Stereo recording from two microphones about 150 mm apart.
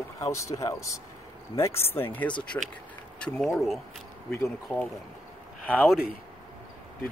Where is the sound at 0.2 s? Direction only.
20° left (ahead or behind).